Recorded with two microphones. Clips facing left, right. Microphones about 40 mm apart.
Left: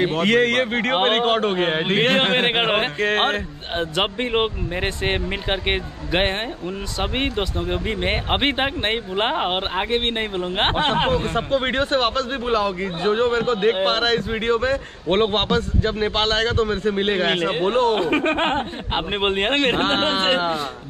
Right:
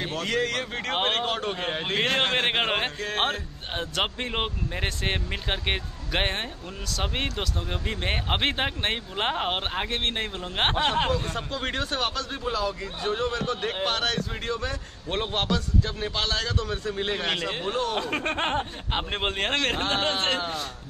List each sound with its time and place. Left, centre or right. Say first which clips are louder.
0.0 s speech: left 10 dB; left
0.3 s speech: left 8 dB; left
3.0 s speech: left 7 dB; left
3.7 s speech: left 6 dB; left